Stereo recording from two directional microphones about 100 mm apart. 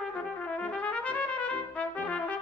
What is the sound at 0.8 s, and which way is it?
Trumpet, 15° left (ahead or behind).